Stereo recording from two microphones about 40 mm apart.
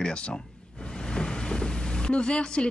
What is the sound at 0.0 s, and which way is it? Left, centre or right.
Speech, left.